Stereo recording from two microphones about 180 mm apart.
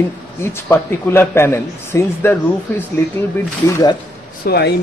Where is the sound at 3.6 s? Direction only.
15° left (ahead or behind).